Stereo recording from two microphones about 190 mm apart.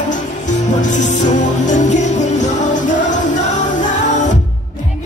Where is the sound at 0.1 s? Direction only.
40° left (ahead or behind).